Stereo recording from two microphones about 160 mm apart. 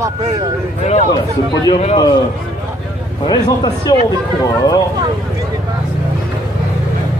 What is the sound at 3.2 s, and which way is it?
Speech, 25° left (ahead or behind).